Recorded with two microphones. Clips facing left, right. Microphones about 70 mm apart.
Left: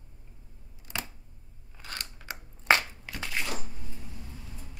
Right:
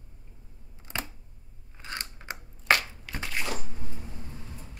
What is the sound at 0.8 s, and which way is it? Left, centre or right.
Camera, right.